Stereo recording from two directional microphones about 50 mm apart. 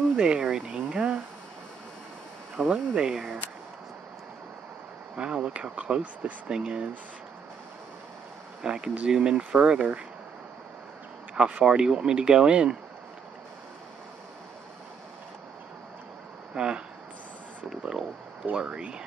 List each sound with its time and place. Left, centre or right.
0.2 s speech: centre
0.7 s speech: right
2.6 s speech: centre
5.1 s speech: right
8.6 s speech: centre
11.3 s speech: centre
16.5 s speech: centre
17.6 s a sound: centre
18.4 s speech: right